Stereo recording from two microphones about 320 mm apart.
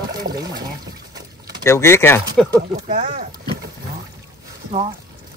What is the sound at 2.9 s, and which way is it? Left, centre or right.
Speech, right.